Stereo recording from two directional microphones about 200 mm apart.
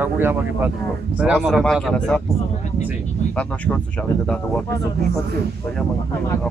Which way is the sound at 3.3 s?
5° left (ahead or behind).